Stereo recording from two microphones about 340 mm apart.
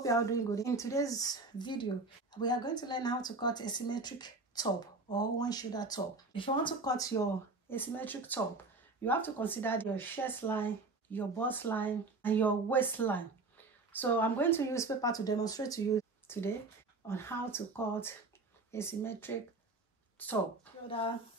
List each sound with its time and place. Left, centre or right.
0.0 s speech: centre
20.8 s speech: centre